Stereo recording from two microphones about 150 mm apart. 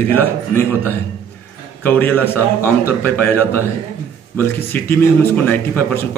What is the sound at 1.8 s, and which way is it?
A man's voice, 10° left (ahead or behind).